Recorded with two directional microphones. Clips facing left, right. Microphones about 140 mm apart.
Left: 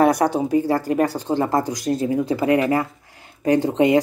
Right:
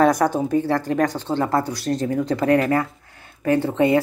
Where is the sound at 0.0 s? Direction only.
15° left (ahead or behind).